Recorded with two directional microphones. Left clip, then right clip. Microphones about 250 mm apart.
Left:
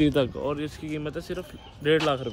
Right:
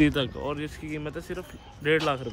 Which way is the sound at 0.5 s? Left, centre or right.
Centre.